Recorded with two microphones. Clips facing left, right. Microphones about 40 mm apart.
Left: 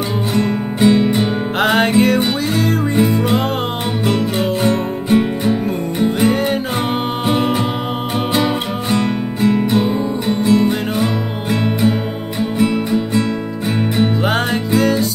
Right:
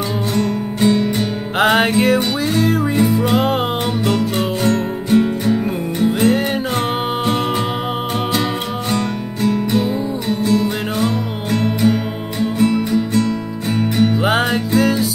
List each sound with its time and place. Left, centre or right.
0.3 s music: centre
1.6 s music: centre
4.6 s music: centre
8.9 s music: left
14.2 s music: centre